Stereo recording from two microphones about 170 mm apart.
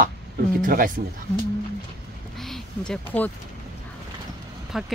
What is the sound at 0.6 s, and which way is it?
Speech, 55° right (ahead or behind).